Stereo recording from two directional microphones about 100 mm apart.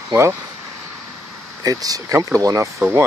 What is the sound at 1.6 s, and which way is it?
Speech, 40° right (ahead or behind).